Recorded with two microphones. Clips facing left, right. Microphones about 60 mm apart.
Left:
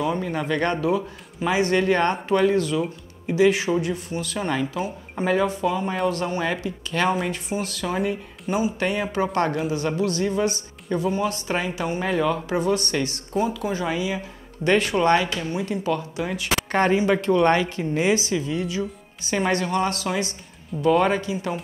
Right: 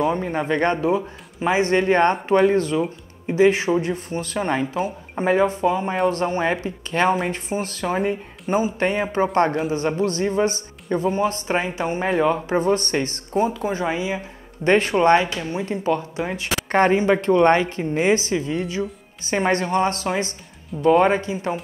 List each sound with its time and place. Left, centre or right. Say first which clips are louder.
0.0 s a woman's voice: right 3 dB; right